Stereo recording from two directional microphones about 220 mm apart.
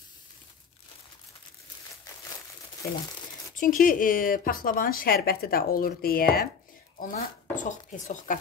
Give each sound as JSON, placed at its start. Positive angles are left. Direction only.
{"t": 3.5, "sound": "a woman's voice", "side_deg": 40}